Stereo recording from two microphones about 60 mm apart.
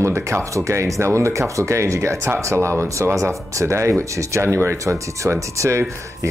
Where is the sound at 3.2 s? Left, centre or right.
Right.